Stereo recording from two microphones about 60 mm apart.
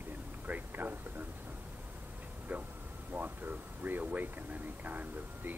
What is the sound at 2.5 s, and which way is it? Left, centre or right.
Speech, right.